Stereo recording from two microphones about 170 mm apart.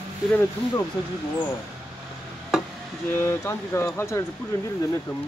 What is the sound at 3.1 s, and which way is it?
Speech, 15° left (ahead or behind).